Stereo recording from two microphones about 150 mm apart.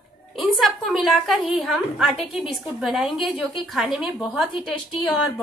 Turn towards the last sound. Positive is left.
turn(degrees=0)  # may be behind; listen again after turning